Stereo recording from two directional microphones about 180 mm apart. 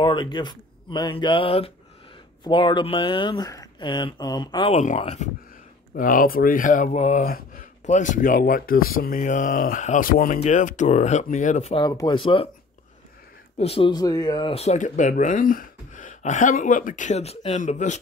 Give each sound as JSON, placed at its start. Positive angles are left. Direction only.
{"t": 0.0, "sound": "speech", "side_deg": 25}
{"t": 5.9, "sound": "speech", "side_deg": 50}
{"t": 7.2, "sound": "speech", "side_deg": 55}
{"t": 11.7, "sound": "speech", "side_deg": 20}
{"t": 13.6, "sound": "speech", "side_deg": 30}